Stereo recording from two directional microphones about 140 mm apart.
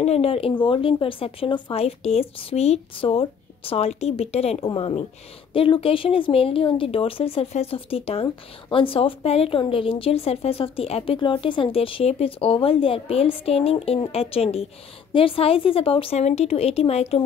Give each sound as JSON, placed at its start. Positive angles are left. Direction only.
{"t": 0.0, "sound": "speech", "side_deg": 45}